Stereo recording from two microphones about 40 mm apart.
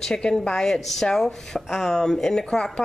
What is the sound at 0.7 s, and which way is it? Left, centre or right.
Speech, centre.